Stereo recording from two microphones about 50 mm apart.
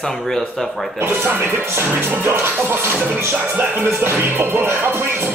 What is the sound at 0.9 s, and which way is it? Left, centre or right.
Music, right.